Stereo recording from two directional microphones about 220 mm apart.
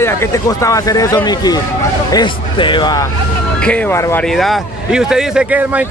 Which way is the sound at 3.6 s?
5° left (ahead or behind).